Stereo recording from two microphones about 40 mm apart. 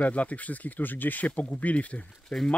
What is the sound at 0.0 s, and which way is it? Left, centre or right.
Speech, left.